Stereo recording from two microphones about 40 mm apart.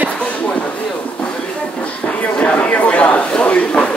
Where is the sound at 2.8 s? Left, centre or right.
Left.